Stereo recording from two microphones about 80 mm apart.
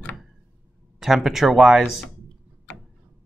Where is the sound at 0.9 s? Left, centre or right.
Centre.